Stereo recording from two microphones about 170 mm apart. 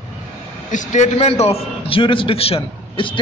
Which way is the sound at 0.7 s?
45° left (ahead or behind).